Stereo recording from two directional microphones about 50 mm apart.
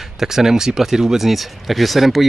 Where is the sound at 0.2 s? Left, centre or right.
Centre.